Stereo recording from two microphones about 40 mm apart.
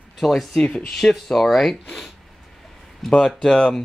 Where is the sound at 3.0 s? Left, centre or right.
Centre.